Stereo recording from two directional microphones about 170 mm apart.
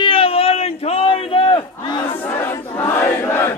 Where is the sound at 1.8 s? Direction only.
30° left (ahead or behind).